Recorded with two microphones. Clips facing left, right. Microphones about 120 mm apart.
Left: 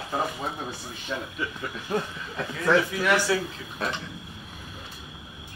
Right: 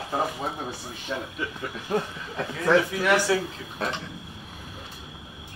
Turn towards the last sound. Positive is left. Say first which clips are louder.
# right 1 dB
turn(degrees=-35)  # may be behind; listen again after turning